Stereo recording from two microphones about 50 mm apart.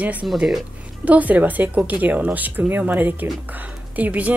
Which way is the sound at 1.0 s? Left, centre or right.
Right.